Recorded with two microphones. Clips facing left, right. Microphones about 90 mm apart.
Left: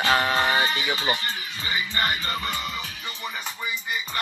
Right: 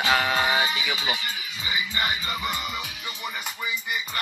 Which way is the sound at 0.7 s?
45° left (ahead or behind).